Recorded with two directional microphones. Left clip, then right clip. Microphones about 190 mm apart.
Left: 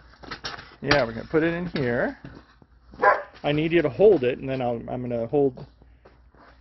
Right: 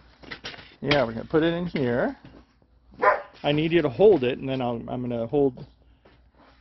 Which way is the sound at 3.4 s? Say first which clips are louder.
Even; 35° right (ahead or behind).